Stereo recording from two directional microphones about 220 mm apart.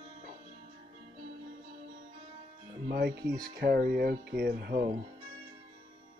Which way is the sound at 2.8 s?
45° right (ahead or behind).